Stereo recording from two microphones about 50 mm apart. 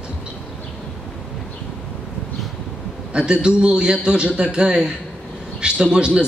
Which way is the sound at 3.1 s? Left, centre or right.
Centre.